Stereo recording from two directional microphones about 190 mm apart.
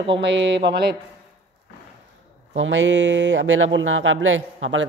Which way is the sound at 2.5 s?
80° right.